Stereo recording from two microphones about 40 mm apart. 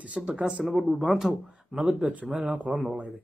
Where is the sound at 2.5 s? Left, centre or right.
Right.